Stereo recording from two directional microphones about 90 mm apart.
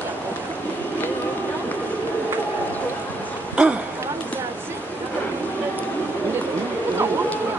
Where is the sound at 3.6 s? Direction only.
10° right (ahead or behind).